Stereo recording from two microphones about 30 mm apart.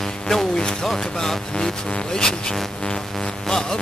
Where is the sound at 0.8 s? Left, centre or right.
Centre.